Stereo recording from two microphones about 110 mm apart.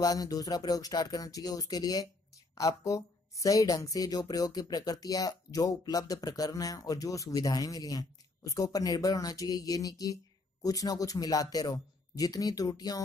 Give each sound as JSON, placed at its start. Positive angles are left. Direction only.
{"t": 0.0, "sound": "speech", "side_deg": 35}